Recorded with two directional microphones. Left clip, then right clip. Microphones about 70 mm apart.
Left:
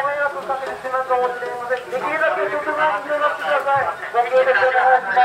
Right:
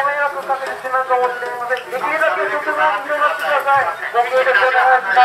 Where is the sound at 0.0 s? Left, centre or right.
Centre.